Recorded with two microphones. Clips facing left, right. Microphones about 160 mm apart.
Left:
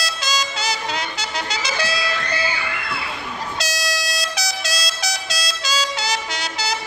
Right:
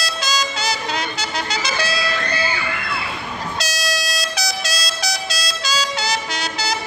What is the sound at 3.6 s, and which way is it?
Vehicle horn, 20° left (ahead or behind).